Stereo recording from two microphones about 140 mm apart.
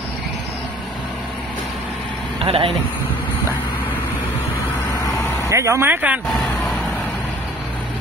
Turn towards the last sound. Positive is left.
turn(degrees=0)  # may be behind; listen again after turning